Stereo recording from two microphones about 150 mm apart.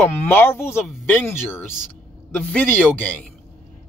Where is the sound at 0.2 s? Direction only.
15° left (ahead or behind).